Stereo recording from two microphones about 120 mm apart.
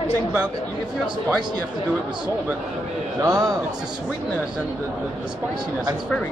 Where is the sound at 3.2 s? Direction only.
30° right (ahead or behind).